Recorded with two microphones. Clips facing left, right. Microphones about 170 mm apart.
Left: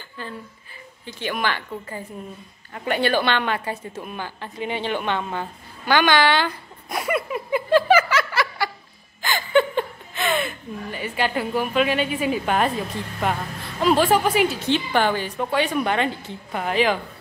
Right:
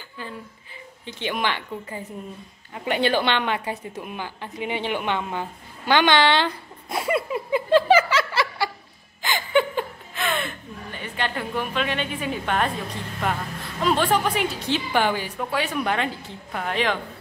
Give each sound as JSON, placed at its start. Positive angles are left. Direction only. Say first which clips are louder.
{"t": 0.2, "sound": "a woman's voice", "louder": "left 1 dB", "side_deg": -15}
{"t": 9.2, "sound": "a sound", "louder": "left 2 dB", "side_deg": -15}
{"t": 10.1, "sound": "a woman's voice", "louder": "left 3 dB", "side_deg": 0}
{"t": 13.7, "sound": "a woman's voice", "louder": "left 3 dB", "side_deg": 5}